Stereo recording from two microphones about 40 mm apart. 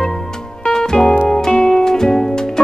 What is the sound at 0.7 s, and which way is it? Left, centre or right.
Music, centre.